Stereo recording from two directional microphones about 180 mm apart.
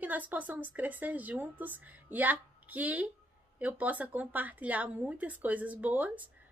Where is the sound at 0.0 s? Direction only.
10° right (ahead or behind).